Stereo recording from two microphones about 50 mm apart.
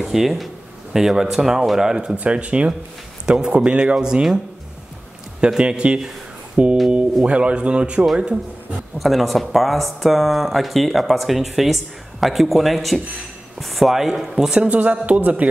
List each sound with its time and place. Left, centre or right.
0.0 s speech: centre
2.1 s speech: right
5.5 s speech: centre
6.5 s music: right
7.2 s speech: right
8.9 s speech: centre
14.3 s speech: centre
14.7 s a man's voice: right